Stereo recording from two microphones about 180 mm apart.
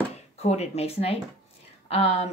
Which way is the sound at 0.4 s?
35° left (ahead or behind).